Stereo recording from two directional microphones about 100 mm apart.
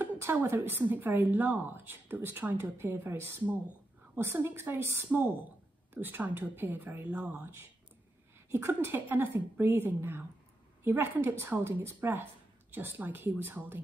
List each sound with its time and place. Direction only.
0.2 s a woman's voice: 25° right (ahead or behind)